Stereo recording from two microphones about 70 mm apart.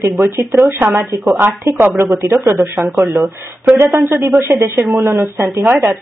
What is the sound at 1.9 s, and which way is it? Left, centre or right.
Speech, right.